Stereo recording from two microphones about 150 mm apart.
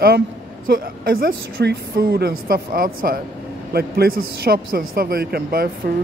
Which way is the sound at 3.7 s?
90° right.